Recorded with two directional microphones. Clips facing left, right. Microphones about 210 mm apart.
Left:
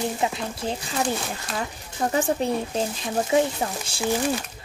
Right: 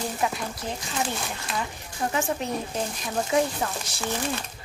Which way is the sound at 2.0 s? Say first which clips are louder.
Left 4 dB; 40° left (ahead or behind).